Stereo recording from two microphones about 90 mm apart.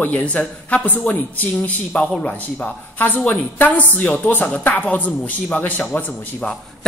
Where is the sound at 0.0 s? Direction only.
15° left (ahead or behind).